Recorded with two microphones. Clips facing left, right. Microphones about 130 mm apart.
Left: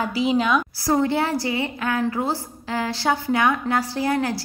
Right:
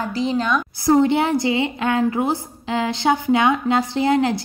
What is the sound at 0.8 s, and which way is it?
A woman's voice, 20° right (ahead or behind).